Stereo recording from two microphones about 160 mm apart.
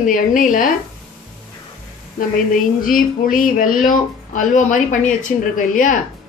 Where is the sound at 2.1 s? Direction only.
60° left (ahead or behind).